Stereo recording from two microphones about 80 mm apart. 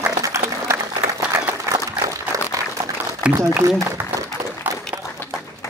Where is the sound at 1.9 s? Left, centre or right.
Right.